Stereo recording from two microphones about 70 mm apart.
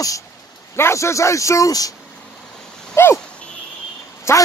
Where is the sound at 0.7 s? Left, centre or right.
Left.